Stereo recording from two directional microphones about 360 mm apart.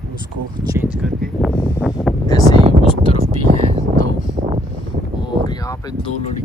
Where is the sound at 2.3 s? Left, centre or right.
Centre.